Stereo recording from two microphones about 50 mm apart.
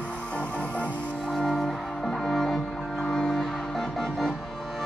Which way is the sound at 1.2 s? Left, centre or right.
Centre.